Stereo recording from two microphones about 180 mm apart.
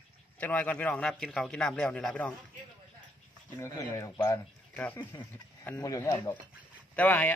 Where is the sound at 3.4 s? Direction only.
15° left (ahead or behind).